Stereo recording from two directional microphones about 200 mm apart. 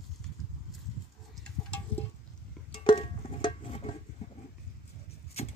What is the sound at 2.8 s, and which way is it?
Music, 25° left (ahead or behind).